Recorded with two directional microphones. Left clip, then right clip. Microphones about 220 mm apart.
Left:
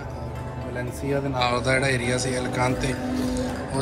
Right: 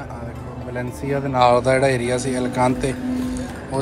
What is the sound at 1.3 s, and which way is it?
Speech, centre (ahead or behind).